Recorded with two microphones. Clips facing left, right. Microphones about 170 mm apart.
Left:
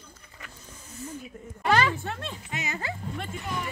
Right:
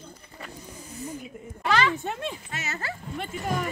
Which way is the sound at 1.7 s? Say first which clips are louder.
Left 1 dB; 45° left (ahead or behind).